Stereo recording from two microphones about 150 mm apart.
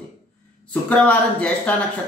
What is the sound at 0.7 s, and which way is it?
Speech, 10° left (ahead or behind).